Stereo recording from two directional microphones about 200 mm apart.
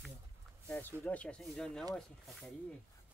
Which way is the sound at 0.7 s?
10° left (ahead or behind).